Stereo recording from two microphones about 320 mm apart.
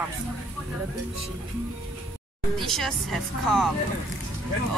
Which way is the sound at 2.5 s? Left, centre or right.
Centre.